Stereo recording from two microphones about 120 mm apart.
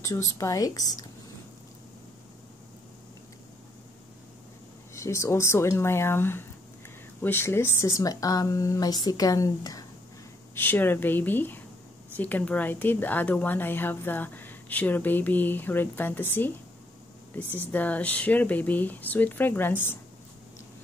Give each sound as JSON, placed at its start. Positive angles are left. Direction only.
{"t": 0.0, "sound": "speech", "side_deg": 25}
{"t": 4.9, "sound": "speech", "side_deg": 25}
{"t": 10.5, "sound": "a woman's voice", "side_deg": 15}
{"t": 17.4, "sound": "speech", "side_deg": -20}
{"t": 17.6, "sound": "a woman's voice", "side_deg": 15}